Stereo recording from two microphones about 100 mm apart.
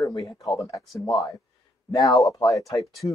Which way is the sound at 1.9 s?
35° left (ahead or behind).